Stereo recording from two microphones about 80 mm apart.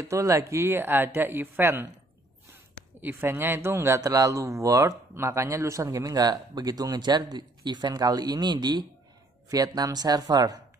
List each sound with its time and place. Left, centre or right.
0.0 s speech: right
9.5 s speech: right